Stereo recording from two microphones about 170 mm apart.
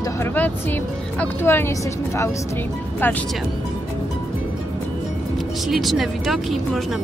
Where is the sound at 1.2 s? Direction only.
15° left (ahead or behind).